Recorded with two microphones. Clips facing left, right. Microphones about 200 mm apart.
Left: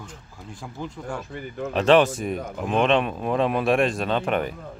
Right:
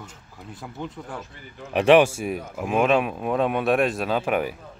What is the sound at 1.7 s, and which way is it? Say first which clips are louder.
Speech: right 2 dB; 10° right (ahead or behind).